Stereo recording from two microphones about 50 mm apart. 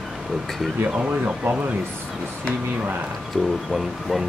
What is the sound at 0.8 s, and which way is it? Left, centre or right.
Speech, right.